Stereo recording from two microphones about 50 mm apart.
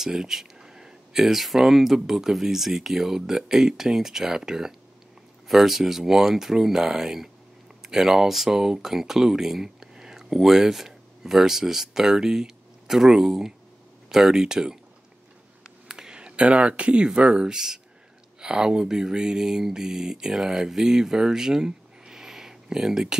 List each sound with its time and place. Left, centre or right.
0.0 s speech: centre
15.9 s speech: centre